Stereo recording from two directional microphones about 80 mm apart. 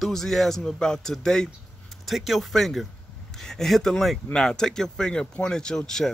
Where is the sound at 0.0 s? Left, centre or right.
Centre.